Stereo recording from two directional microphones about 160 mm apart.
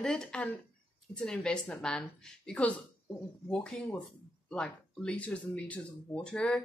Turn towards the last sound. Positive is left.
turn(degrees=5)  # may be behind; listen again after turning